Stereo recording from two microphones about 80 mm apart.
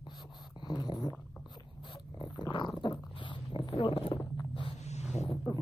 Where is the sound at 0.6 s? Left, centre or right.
Left.